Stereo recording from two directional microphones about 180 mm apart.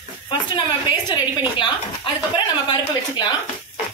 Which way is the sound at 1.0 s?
25° left (ahead or behind).